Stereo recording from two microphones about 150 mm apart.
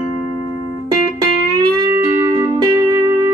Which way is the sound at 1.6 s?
25° right (ahead or behind).